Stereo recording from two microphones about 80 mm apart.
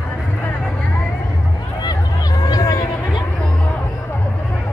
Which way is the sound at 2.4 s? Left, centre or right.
Left.